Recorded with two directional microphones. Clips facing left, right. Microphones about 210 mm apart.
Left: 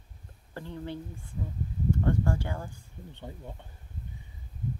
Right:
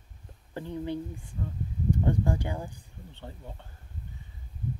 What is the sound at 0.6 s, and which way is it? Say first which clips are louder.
Speech: right 5 dB; 15° right (ahead or behind).